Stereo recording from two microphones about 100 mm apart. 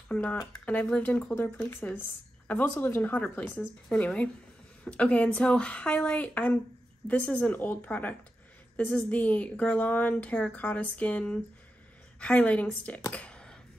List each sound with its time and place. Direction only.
0.1 s speech: 15° left (ahead or behind)
13.1 s clicking: 10° left (ahead or behind)